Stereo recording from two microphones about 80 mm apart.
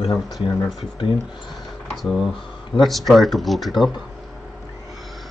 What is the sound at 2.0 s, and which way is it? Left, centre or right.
Speech, centre.